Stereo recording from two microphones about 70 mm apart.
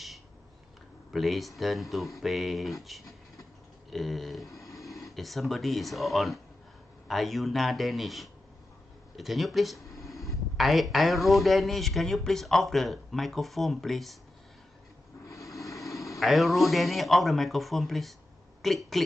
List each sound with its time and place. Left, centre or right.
1.1 s speech: centre
4.5 s a sound: left
5.1 s speech: centre
9.8 s a sound: left
10.6 s speech: centre
15.2 s vehicle: left
16.2 s speech: centre